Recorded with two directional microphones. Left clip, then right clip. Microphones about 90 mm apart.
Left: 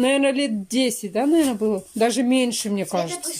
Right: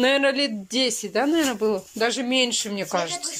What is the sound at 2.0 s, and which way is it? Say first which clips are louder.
Speech: left 2 dB; 65° left (ahead or behind).